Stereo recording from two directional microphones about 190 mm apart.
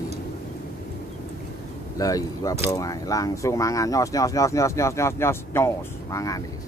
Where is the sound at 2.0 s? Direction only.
20° left (ahead or behind).